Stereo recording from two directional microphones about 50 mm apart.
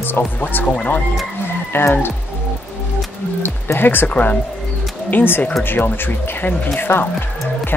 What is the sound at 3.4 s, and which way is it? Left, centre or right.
Speech, left.